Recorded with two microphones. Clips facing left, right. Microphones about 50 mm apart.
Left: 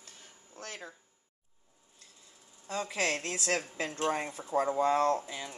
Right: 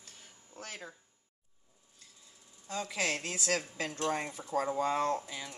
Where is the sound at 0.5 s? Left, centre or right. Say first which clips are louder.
Left 1 dB; centre.